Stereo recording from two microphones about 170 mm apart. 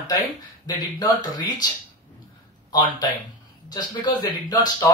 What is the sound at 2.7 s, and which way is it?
Speech, 25° left (ahead or behind).